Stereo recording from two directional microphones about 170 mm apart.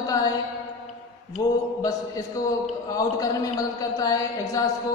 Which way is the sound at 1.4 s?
20° left (ahead or behind).